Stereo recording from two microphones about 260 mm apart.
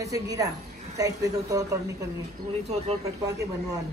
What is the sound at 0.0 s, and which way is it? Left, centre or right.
Speech, centre.